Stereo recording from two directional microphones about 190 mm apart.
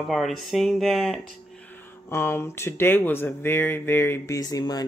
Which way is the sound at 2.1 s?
15° left (ahead or behind).